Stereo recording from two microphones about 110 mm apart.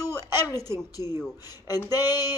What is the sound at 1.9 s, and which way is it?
Speech, 40° left (ahead or behind).